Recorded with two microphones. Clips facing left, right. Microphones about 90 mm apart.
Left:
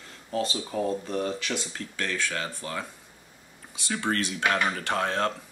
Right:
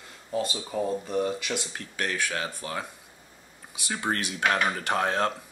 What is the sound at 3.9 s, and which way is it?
Speech, 25° right (ahead or behind).